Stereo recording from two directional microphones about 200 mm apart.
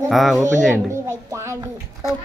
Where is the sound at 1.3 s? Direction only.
15° right (ahead or behind).